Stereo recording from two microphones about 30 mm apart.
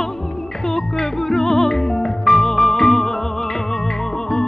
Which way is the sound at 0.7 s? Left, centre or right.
Centre.